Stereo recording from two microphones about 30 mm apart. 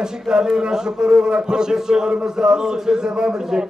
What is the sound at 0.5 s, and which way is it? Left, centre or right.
A man's voice, centre.